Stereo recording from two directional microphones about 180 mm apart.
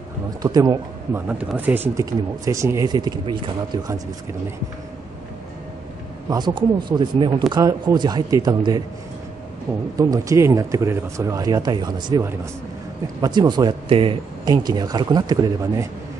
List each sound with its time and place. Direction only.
0.4 s speech: 20° right (ahead or behind)
1.4 s speech: 10° right (ahead or behind)
6.2 s speech: 25° right (ahead or behind)
9.9 s speech: 20° right (ahead or behind)